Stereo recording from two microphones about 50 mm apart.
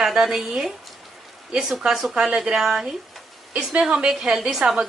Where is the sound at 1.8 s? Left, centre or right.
Centre.